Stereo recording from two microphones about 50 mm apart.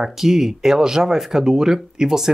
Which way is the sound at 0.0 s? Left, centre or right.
Centre.